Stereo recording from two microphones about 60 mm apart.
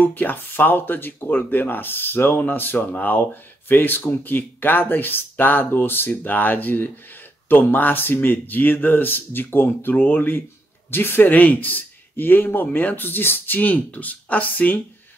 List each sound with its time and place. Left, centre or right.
0.0 s speech: left